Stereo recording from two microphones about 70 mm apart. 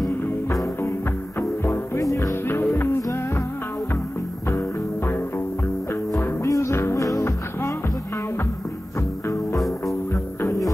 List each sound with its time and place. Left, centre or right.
2.0 s music: left
2.7 s music: left
4.5 s music: left
6.1 s music: left
6.7 s music: left
10.4 s music: left